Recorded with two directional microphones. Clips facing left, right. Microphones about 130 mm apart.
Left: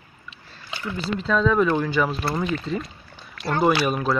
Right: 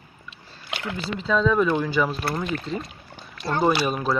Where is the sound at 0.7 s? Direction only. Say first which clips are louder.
Even; 90° right.